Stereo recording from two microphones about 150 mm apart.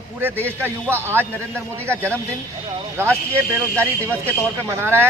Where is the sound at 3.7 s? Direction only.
15° right (ahead or behind).